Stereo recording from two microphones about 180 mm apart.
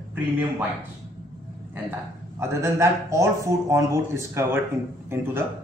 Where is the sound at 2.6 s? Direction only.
15° right (ahead or behind).